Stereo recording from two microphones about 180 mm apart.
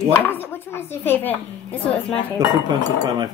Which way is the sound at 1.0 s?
10° left (ahead or behind).